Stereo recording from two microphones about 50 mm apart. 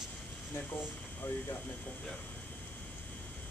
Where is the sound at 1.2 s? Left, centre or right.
Left.